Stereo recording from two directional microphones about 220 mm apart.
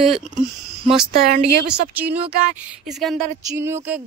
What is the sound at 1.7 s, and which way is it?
Speech, 5° right (ahead or behind).